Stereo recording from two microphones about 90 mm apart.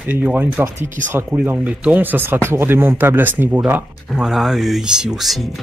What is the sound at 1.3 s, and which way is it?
Speech, 15° right (ahead or behind).